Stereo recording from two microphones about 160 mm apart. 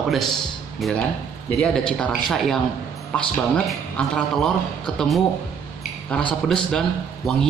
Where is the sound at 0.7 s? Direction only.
Centre (ahead or behind).